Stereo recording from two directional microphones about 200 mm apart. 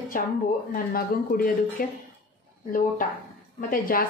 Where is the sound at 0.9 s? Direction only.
45° left (ahead or behind).